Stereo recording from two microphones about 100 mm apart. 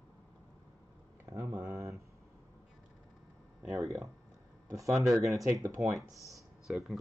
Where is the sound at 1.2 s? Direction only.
25° right (ahead or behind).